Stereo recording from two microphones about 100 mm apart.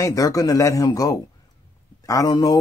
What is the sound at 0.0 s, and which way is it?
Speech, 35° left (ahead or behind).